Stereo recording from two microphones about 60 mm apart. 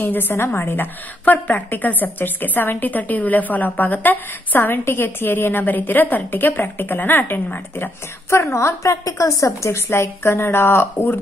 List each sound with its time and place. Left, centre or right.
0.0 s a woman's voice: left
10.3 s a woman's voice: left